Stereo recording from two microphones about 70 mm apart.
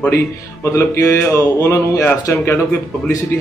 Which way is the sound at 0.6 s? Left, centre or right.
Left.